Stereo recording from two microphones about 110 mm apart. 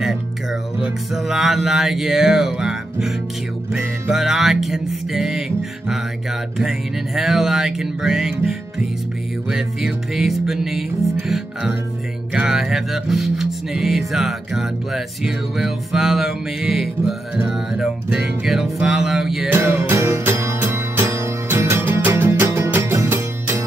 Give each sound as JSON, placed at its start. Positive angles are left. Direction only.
{"t": 0.7, "sound": "music", "side_deg": -5}
{"t": 7.2, "sound": "music", "side_deg": -5}
{"t": 19.5, "sound": "music", "side_deg": -20}